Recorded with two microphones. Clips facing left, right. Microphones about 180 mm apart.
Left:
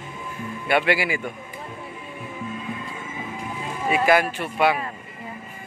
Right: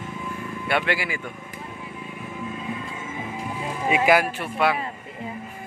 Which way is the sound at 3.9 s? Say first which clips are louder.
Even; 5° right (ahead or behind).